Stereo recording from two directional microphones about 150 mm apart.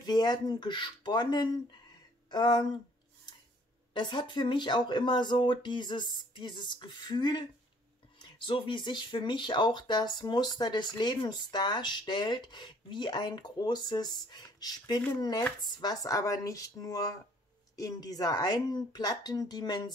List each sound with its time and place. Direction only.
0.0 s speech: 30° left (ahead or behind)
3.9 s speech: 30° left (ahead or behind)